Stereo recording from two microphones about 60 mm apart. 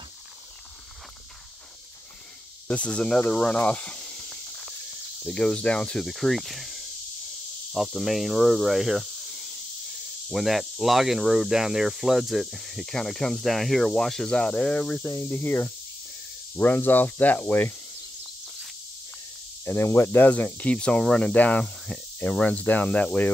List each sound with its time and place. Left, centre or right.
2.7 s speech: left
3.3 s snake: centre
5.2 s speech: centre
9.0 s snake: centre
10.3 s speech: centre
15.2 s speech: left
16.5 s speech: left
19.6 s speech: left
20.2 s speech: left